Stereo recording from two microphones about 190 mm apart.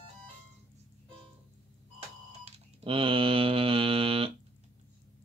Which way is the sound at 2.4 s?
30° right (ahead or behind).